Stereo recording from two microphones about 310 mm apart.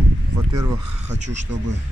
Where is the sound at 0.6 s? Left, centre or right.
Right.